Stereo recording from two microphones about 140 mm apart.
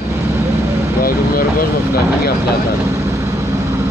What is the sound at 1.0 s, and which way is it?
Vehicle, 90° left.